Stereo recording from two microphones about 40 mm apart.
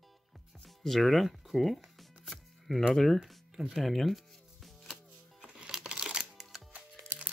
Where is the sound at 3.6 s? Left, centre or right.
Centre.